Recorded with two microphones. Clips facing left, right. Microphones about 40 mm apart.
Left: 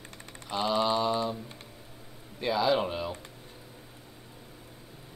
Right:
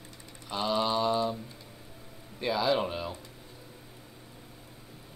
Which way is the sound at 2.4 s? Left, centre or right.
Centre.